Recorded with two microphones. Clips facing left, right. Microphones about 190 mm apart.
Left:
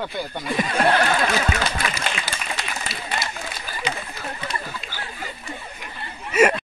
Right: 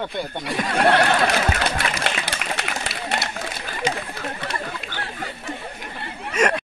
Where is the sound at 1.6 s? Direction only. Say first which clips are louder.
Right 2 dB; 65° right (ahead or behind).